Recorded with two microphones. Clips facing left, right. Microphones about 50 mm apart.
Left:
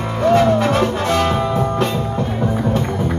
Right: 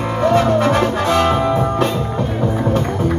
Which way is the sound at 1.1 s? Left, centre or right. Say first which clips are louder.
Right 2 dB; centre.